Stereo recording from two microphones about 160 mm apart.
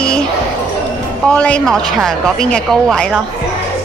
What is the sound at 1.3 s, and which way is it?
Speech, 5° left (ahead or behind).